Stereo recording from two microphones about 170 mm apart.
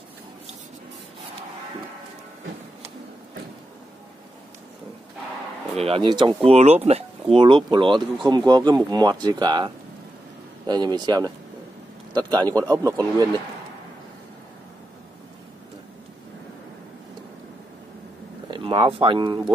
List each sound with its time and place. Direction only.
5.8 s speech: 35° right (ahead or behind)
10.7 s a man's voice: 25° right (ahead or behind)
18.5 s speech: 30° right (ahead or behind)